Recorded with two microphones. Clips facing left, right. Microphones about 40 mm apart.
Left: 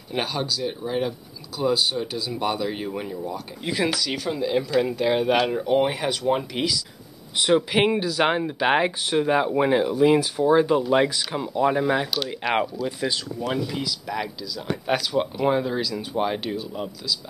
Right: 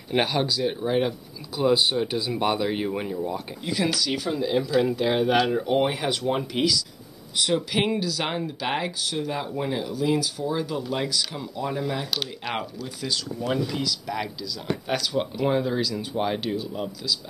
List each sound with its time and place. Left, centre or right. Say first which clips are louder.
0.1 s speech: right 3 dB; right
3.7 s speech: even; centre
7.3 s speech: left 4 dB; left
13.5 s speech: right 1 dB; centre